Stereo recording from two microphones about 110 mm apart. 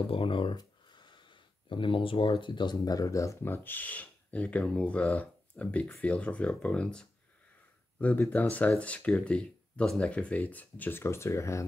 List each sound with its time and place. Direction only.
0.0 s speech: 55° left (ahead or behind); by 11.6 s 25° left (ahead or behind)